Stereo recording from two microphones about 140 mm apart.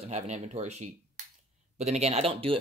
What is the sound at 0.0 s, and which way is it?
Speech, 55° right (ahead or behind).